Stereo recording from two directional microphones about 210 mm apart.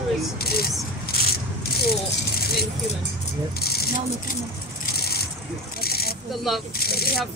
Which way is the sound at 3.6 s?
50° left (ahead or behind).